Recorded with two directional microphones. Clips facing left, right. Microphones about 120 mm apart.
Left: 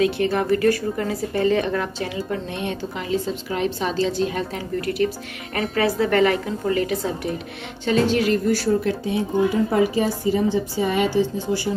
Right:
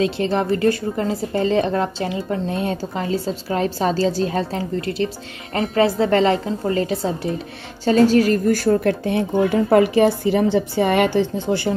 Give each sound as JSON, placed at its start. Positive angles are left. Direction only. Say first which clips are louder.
{"t": 0.0, "sound": "a woman's voice", "louder": "right 1 dB", "side_deg": -30}